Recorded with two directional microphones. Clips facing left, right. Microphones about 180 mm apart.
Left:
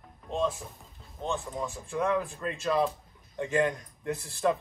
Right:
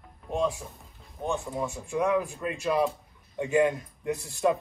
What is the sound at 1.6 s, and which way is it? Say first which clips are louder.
Speech: right 2 dB; 15° right (ahead or behind).